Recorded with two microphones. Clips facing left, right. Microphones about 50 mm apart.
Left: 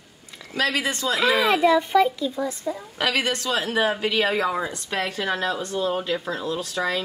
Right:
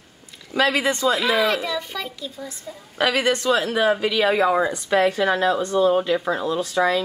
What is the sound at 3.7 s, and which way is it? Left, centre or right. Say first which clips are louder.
Speech: right 3 dB; centre.